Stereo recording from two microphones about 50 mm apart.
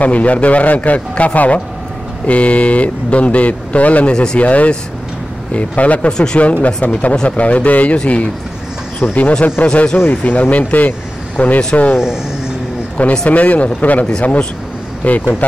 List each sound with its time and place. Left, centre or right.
0.0 s speech: left
4.1 s speech: centre
4.4 s speech: left
6.1 s speech: centre
6.4 s speech: left
9.3 s speech: left
12.9 s a man's voice: centre
13.3 s speech: left
15.0 s speech: left